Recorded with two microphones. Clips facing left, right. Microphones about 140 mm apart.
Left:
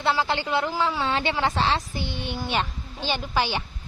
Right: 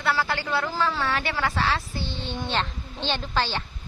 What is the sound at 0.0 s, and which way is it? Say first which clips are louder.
A woman's voice: left 2 dB; 20° left (ahead or behind).